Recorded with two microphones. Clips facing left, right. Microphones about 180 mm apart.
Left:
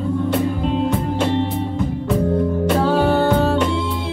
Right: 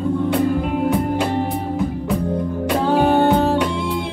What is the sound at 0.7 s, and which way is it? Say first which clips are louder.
Music: right 1 dB; 25° left (ahead or behind).